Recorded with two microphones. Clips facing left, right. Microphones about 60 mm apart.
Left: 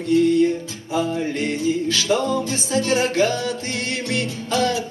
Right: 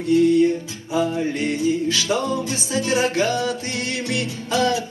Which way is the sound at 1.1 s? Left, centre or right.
Centre.